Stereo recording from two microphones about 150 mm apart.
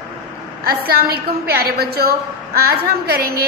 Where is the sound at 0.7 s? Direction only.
90° right.